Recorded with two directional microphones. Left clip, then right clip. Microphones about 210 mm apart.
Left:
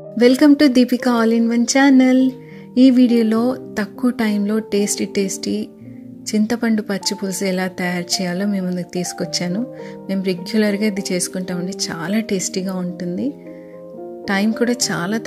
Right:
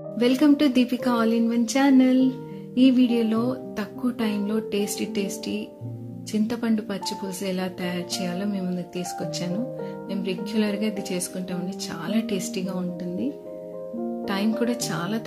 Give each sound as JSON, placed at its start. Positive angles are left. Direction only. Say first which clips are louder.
{"t": 0.2, "sound": "a woman's voice", "louder": "left 8 dB", "side_deg": 35}